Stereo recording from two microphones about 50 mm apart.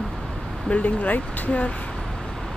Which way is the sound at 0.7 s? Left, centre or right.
Left.